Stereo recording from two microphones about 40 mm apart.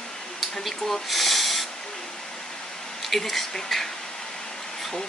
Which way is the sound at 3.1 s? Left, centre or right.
Centre.